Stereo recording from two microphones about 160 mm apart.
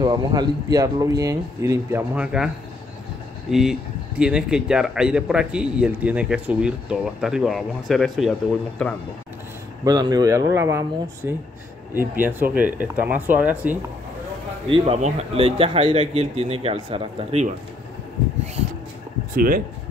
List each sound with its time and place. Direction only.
0.0 s a man's voice: 25° right (ahead or behind); by 8.9 s 5° left (ahead or behind)
9.8 s speech: 25° right (ahead or behind)
14.7 s speech: 40° right (ahead or behind)
19.3 s speech: 65° right (ahead or behind)